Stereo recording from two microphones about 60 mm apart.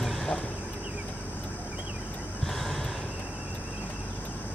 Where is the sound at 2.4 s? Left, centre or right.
Centre.